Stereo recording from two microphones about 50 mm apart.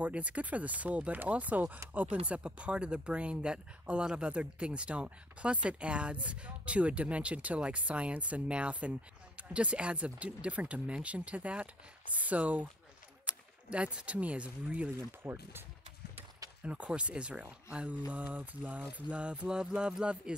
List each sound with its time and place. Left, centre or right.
0.0 s speech: right
16.6 s speech: right